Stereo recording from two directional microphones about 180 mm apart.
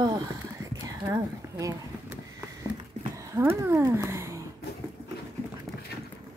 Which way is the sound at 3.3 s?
15° right (ahead or behind).